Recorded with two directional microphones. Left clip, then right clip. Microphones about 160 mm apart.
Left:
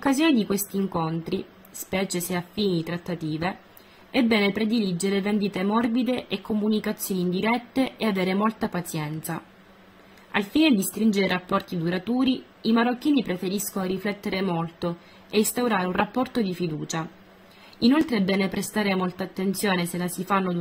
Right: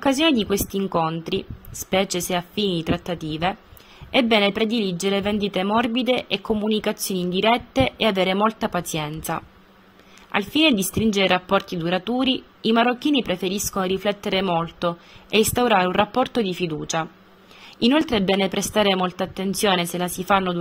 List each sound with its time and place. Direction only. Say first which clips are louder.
0.0 s a woman's voice: right 3 dB; 35° right (ahead or behind)